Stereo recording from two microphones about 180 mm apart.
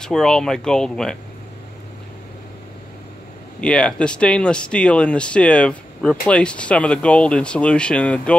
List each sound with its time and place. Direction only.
0.0 s speech: 5° left (ahead or behind)
3.6 s speech: 5° left (ahead or behind)